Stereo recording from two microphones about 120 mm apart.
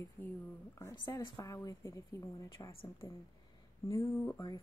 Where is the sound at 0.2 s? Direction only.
15° left (ahead or behind).